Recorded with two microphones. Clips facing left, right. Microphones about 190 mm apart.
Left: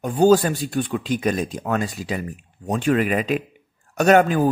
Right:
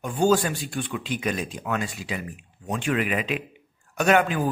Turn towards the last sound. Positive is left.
turn(degrees=40)  # may be behind; listen again after turning